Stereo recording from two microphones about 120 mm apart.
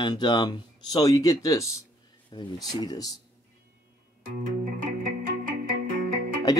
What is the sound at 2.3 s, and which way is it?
Speech, 40° left (ahead or behind).